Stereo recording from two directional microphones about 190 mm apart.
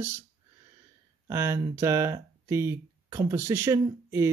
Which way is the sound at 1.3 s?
15° right (ahead or behind).